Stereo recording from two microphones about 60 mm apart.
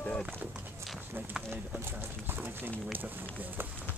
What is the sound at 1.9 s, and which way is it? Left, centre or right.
Speech, right.